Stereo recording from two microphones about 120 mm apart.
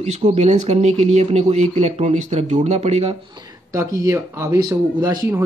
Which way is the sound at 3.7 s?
30° right (ahead or behind).